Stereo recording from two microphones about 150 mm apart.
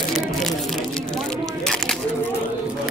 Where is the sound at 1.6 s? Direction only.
5° left (ahead or behind).